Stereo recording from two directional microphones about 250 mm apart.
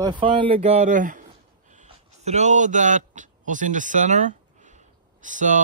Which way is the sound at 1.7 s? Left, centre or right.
Right.